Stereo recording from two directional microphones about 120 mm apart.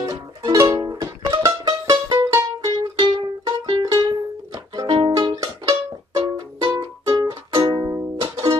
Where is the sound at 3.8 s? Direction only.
35° right (ahead or behind).